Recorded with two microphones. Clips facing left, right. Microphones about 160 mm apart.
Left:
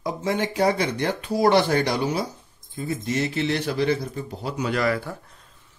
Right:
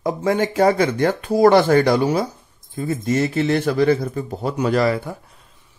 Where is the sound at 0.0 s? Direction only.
50° right (ahead or behind).